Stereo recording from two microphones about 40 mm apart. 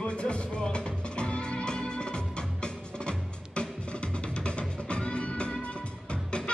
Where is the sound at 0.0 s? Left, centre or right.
Left.